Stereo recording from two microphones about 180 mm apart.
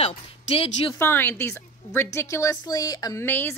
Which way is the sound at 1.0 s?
10° left (ahead or behind).